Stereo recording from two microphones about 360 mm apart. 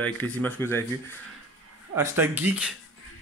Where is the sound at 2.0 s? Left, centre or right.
Centre.